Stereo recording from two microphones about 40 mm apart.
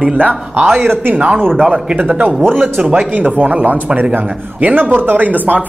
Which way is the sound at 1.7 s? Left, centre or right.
Right.